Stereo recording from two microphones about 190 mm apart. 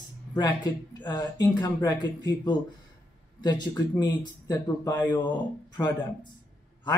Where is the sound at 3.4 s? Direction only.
20° left (ahead or behind).